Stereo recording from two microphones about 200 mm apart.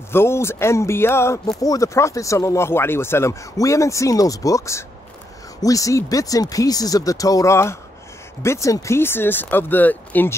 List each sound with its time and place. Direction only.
0.1 s speech: 10° left (ahead or behind)